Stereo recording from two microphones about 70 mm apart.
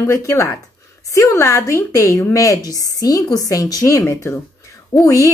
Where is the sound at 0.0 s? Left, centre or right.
Left.